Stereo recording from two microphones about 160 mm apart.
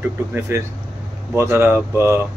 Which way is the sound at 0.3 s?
15° right (ahead or behind).